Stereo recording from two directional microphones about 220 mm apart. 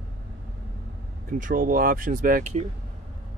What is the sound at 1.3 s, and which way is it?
Speech, 40° right (ahead or behind).